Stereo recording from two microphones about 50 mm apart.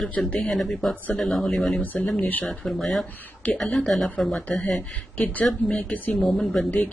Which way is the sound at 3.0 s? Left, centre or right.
Left.